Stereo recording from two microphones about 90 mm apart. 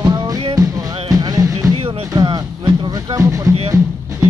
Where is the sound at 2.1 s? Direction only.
55° right (ahead or behind).